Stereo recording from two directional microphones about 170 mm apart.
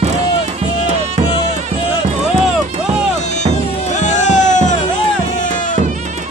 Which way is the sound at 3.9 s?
45° left (ahead or behind).